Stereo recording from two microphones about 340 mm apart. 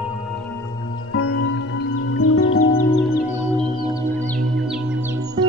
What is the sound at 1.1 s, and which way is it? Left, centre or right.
Music, left.